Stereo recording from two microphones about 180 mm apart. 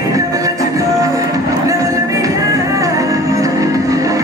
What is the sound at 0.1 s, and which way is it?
Music, 20° right (ahead or behind).